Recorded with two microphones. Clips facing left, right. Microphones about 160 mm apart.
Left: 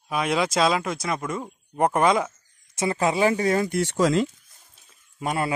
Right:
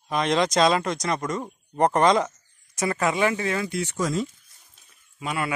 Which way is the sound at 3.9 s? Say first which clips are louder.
Left 6 dB; 90° left.